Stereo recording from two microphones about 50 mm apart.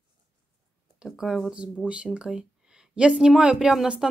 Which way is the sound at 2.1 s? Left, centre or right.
Centre.